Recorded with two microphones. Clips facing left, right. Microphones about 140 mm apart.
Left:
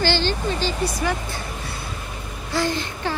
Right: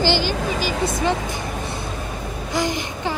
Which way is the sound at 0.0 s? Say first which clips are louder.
Right 1 dB; 15° right (ahead or behind).